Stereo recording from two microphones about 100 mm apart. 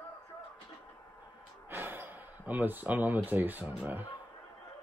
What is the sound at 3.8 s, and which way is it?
Speech, 20° right (ahead or behind).